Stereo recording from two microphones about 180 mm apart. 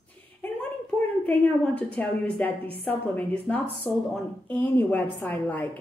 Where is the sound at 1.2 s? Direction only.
10° left (ahead or behind).